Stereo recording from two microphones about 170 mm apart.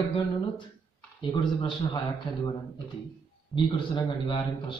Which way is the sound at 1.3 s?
25° left (ahead or behind).